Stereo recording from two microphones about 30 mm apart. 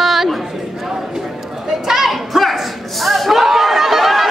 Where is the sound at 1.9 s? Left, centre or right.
Centre.